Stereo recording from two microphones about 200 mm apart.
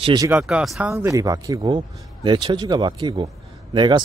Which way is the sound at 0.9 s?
15° right (ahead or behind).